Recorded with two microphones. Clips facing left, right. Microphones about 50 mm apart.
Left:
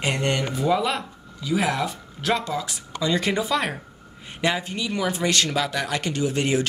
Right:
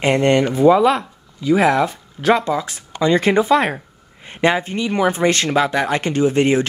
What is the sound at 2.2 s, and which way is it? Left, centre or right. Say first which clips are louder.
Speech: right 8 dB; right.